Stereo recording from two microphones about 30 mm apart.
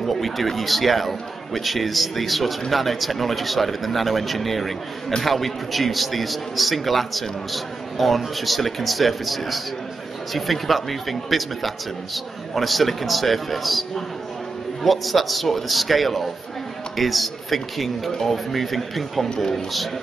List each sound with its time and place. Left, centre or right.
0.0 s a man's voice: centre
19.2 s speech: left